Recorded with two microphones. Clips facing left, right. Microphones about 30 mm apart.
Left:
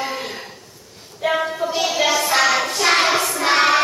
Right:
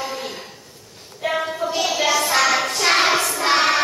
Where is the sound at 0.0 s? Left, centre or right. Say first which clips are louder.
Left 2 dB; centre.